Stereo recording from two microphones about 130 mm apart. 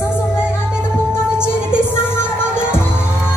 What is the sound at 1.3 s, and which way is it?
Music, 15° left (ahead or behind).